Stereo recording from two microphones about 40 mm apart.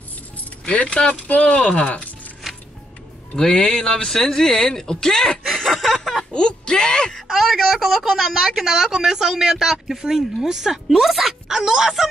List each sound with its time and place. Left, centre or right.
0.7 s speech: left
3.3 s speech: centre
5.6 s chuckle: centre
6.3 s speech: left
7.6 s speech: centre